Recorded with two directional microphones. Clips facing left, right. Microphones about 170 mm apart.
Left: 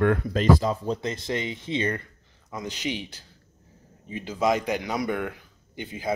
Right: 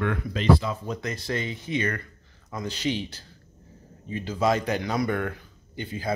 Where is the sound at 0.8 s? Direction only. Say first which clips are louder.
Left 3 dB; 30° left (ahead or behind).